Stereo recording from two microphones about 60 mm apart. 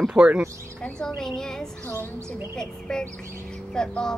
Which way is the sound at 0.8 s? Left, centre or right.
Centre.